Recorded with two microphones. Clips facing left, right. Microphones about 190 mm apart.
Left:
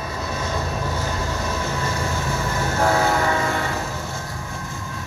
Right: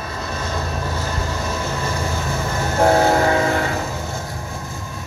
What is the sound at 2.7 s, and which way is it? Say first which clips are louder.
Train: right 6 dB; 30° right (ahead or behind).